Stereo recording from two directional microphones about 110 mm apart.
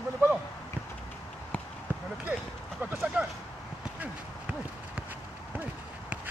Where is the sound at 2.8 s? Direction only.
15° right (ahead or behind).